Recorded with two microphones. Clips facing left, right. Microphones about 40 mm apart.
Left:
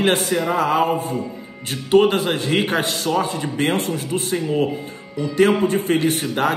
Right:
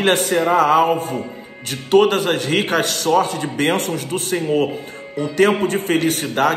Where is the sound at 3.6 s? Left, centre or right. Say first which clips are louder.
Right 2 dB; right.